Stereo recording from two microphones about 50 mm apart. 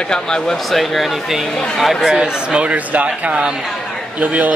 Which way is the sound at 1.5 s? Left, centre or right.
Centre.